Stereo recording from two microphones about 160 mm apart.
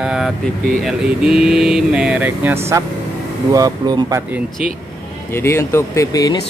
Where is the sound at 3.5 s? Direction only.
25° right (ahead or behind).